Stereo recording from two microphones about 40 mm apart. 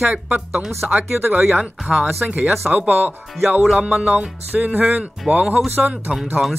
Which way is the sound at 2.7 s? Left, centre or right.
Right.